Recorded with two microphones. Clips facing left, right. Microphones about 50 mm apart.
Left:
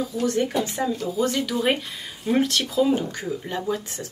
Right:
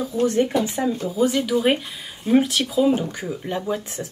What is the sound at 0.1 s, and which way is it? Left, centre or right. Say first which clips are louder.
Speech: right 6 dB; right.